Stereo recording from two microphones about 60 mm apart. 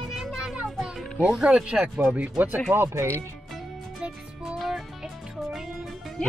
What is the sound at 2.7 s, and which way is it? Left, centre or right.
Speech, right.